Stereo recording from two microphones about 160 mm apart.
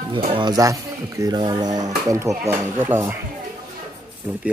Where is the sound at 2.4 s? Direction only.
15° right (ahead or behind).